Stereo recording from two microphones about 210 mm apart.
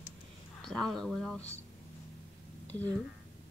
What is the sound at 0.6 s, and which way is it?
Speech, centre (ahead or behind).